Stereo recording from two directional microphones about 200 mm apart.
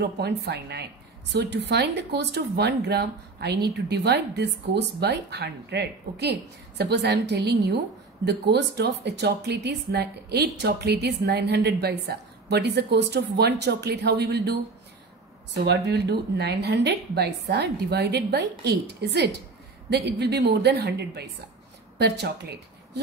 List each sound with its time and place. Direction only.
0.0 s speech: 55° right (ahead or behind)